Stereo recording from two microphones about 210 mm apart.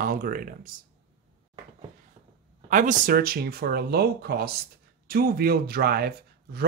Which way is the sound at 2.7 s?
40° right (ahead or behind).